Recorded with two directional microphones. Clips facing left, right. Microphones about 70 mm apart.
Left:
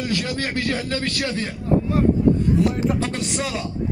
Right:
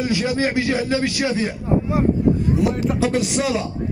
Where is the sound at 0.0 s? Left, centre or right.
Centre.